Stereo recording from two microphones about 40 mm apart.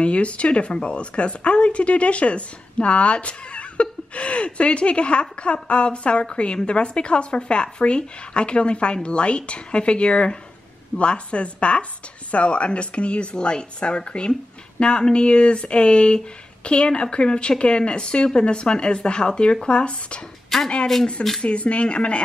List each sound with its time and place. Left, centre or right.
0.0 s a woman's voice: left
20.4 s a sound: centre
20.9 s speech: centre
21.5 s a woman's voice: left